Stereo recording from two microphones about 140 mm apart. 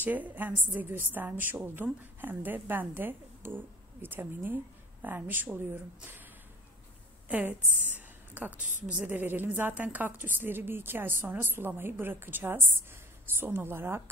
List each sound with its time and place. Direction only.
0.0 s a woman's voice: 10° right (ahead or behind)
7.2 s a woman's voice: 10° right (ahead or behind)